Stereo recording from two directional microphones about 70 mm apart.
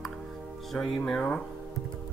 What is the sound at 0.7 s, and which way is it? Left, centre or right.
Speech, centre.